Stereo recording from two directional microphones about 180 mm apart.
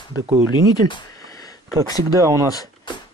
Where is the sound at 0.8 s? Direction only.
25° left (ahead or behind).